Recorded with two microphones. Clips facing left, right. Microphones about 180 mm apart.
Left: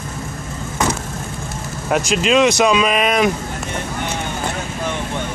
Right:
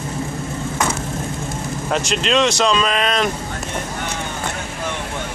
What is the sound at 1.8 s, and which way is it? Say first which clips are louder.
Speech: left 4 dB; 10° left (ahead or behind).